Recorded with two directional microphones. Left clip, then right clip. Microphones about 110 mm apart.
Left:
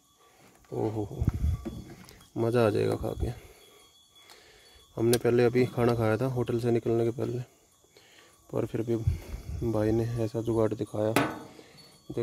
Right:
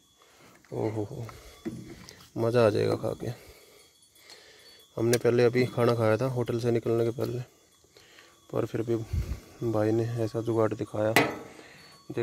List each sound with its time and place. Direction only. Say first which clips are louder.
0.7 s speech: even; 10° left (ahead or behind)
2.0 s speech: right 1 dB; 30° left (ahead or behind)
4.9 s speech: even; 30° left (ahead or behind)
8.5 s speech: right 1 dB; 30° left (ahead or behind)